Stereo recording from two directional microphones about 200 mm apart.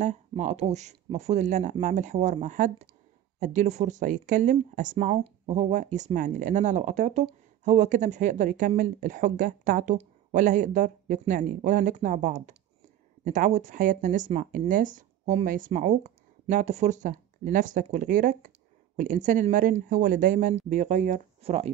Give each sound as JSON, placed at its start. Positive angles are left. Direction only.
{"t": 0.4, "sound": "speech", "side_deg": -35}